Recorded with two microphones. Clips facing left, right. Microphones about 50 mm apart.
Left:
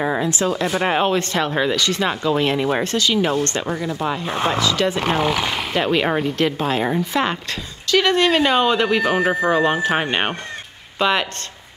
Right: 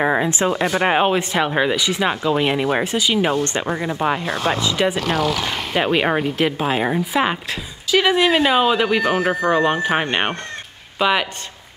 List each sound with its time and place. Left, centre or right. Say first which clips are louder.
0.0 s speech: right 2 dB; right
4.9 s speech: left 1 dB; left
5.4 s speech: left 1 dB; centre
5.8 s speech: right 1 dB; centre